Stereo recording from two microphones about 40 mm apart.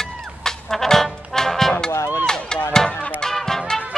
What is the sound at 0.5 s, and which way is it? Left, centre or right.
Music, centre.